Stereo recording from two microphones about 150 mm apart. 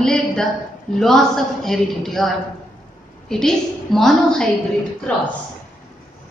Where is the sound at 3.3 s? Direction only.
5° left (ahead or behind).